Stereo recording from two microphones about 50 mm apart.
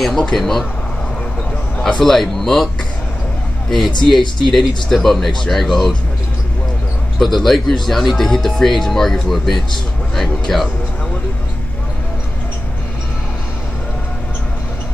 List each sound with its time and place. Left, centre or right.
0.3 s speech: centre
1.8 s a man's voice: centre
2.0 s speech: centre
3.7 s speech: centre
7.2 s speech: centre